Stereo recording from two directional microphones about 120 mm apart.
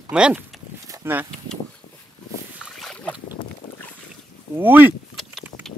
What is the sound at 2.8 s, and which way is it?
Boat, 5° left (ahead or behind).